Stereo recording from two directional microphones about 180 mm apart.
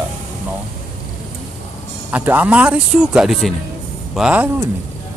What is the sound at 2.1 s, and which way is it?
Speech, 10° right (ahead or behind).